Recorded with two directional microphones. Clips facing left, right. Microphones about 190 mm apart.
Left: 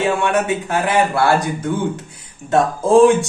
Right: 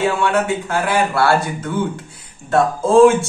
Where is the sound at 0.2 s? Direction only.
20° left (ahead or behind).